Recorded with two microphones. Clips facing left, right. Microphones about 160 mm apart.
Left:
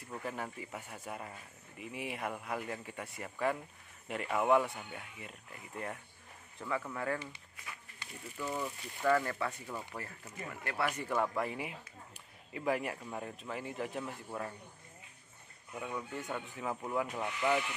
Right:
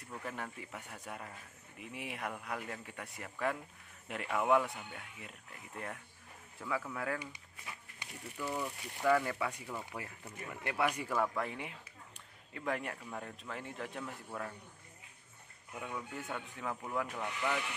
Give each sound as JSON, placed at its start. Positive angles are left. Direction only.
{"t": 0.1, "sound": "speech", "side_deg": 5}
{"t": 7.2, "sound": "a sound", "side_deg": -15}
{"t": 8.4, "sound": "speech", "side_deg": 5}
{"t": 11.1, "sound": "speech", "side_deg": 5}
{"t": 15.8, "sound": "speech", "side_deg": 0}